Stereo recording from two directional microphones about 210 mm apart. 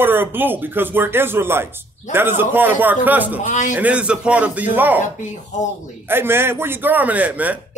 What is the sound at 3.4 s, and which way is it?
Speech, 35° left (ahead or behind).